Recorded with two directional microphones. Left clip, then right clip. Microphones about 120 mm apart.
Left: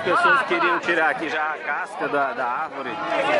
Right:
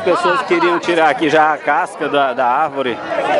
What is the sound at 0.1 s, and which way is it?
Speech, 30° right (ahead or behind).